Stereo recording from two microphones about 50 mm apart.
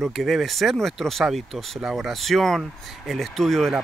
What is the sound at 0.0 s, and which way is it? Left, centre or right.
Speech, centre.